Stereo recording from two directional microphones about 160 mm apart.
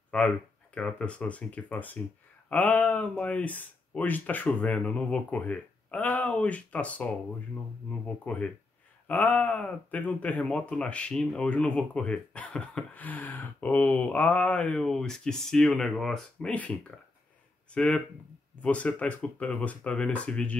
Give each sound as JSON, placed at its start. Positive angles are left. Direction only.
{"t": 0.1, "sound": "speech", "side_deg": 5}
{"t": 9.0, "sound": "speech", "side_deg": 10}
{"t": 17.7, "sound": "speech", "side_deg": 5}